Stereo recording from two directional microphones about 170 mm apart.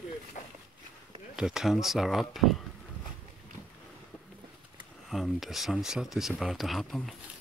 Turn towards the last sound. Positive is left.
turn(degrees=0)  # may be behind; listen again after turning